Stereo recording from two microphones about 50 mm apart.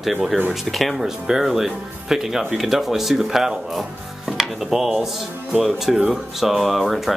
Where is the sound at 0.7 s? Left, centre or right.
Centre.